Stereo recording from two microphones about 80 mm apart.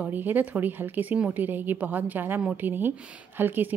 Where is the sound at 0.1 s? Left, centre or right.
Right.